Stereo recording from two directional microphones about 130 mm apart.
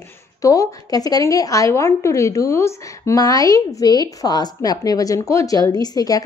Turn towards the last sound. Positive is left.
turn(degrees=30)  # may be behind; listen again after turning